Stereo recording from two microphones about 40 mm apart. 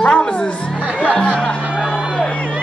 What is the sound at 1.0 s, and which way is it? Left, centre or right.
Speech, left.